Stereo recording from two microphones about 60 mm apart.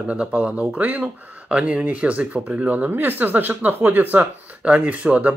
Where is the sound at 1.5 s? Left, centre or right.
Centre.